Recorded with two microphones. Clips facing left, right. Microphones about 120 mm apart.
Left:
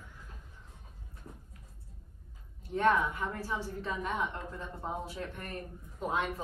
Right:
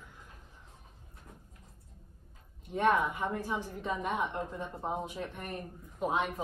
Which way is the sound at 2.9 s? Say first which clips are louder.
Even; 15° right (ahead or behind).